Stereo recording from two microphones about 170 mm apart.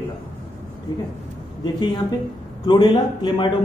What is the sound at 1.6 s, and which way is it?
Speech, 25° left (ahead or behind).